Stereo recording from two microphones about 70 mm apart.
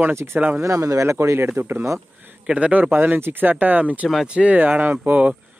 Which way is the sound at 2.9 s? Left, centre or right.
Right.